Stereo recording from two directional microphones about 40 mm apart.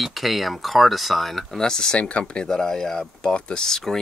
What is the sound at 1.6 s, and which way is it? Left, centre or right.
Speech, centre.